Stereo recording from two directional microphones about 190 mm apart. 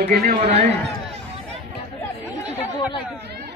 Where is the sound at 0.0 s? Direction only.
35° right (ahead or behind).